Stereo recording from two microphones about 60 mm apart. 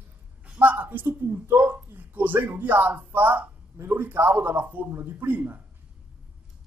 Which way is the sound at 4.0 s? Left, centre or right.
Right.